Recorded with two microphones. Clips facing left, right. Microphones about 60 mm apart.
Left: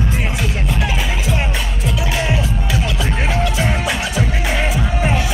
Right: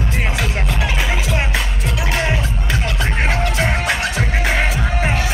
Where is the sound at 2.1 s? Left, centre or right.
Right.